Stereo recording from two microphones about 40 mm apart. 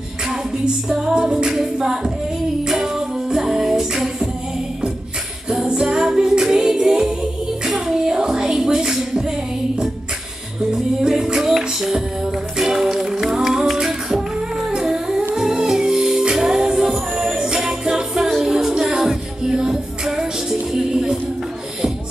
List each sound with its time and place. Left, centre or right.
0.8 s music: centre
5.5 s music: centre
10.7 s music: centre
14.7 s humming: centre
15.3 s music: centre
17.6 s jingle bell: centre
18.4 s music: centre
19.5 s music: centre